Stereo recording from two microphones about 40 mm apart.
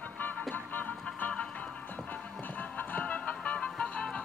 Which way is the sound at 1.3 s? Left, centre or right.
Left.